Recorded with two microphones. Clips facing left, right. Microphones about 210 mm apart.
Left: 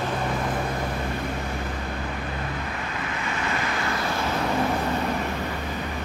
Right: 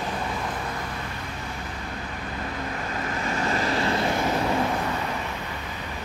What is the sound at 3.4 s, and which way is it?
Vehicle, 35° right (ahead or behind).